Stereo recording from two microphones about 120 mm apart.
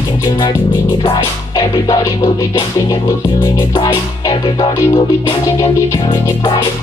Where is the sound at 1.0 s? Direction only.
40° left (ahead or behind).